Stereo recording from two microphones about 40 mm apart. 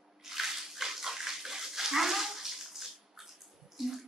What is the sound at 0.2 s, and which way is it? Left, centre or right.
Bathtub, centre.